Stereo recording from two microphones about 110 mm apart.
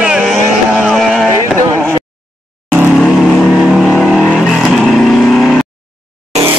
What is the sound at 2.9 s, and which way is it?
Vehicle, 5° left (ahead or behind).